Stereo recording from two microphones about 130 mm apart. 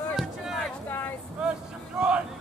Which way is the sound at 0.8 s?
15° left (ahead or behind).